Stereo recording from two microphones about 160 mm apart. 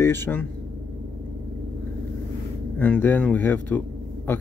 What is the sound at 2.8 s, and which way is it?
Speech, 10° left (ahead or behind).